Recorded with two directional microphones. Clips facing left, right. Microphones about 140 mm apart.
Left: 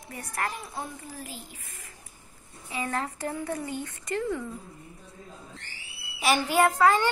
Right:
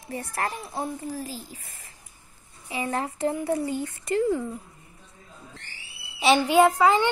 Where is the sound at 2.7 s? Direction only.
25° right (ahead or behind).